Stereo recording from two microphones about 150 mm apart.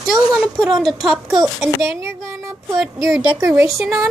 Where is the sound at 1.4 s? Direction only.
15° right (ahead or behind).